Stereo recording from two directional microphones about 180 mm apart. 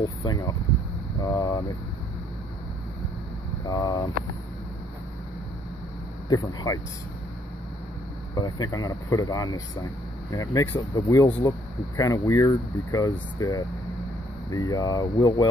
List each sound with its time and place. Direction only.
0.0 s a sound: 25° left (ahead or behind)
1.2 s vehicle: 20° left (ahead or behind)
3.6 s speech: 20° left (ahead or behind)
6.2 s speech: 20° left (ahead or behind)
8.4 s speech: 20° left (ahead or behind)